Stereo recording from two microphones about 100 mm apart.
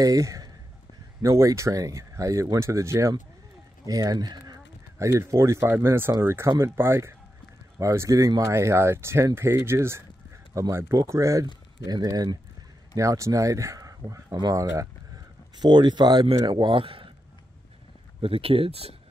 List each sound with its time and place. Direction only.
0.0 s speech: 35° right (ahead or behind)
4.9 s speech: 30° right (ahead or behind)
15.5 s speech: 45° right (ahead or behind)
18.2 s speech: 70° right (ahead or behind)